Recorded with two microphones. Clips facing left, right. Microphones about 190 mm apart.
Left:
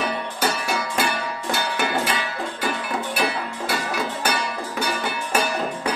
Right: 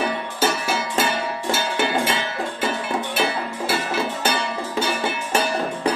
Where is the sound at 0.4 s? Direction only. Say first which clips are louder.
Right 3 dB; 25° right (ahead or behind).